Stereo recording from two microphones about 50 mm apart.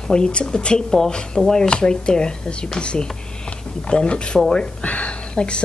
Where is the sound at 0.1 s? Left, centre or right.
Centre.